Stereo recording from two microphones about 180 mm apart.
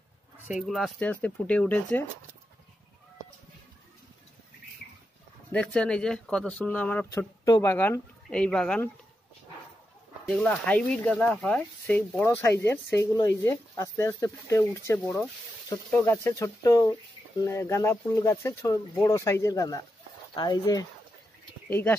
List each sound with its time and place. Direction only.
0.5 s speech: centre (ahead or behind)
5.5 s speech: 5° left (ahead or behind)
10.2 s speech: 5° left (ahead or behind)